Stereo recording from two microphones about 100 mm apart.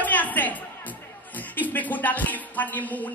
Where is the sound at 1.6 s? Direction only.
15° left (ahead or behind).